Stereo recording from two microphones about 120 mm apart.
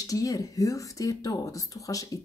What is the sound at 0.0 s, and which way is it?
Speech, 30° left (ahead or behind).